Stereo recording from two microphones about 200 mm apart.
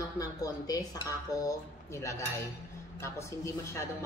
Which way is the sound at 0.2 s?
15° left (ahead or behind).